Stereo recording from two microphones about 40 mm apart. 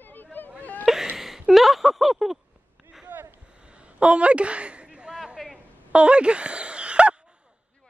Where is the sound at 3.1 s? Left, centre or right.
Right.